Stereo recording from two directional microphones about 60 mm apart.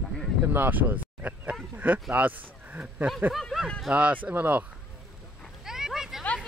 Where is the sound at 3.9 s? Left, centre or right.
Right.